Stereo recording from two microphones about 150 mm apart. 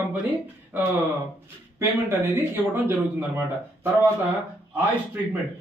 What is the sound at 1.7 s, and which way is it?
Speech, 15° right (ahead or behind).